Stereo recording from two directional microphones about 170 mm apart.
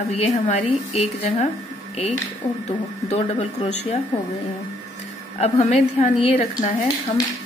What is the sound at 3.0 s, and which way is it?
Speech, 40° left (ahead or behind).